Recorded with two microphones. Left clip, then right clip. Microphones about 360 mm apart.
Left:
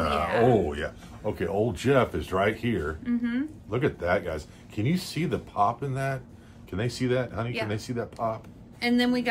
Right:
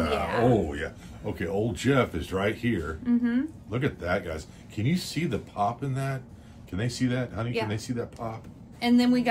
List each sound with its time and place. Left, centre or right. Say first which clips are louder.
0.2 s a sound: left 3 dB; centre
0.7 s speech: left 2 dB; centre
3.1 s a woman's voice: right 5 dB; centre
3.7 s speech: left 3 dB; centre
8.7 s a woman's voice: right 1 dB; centre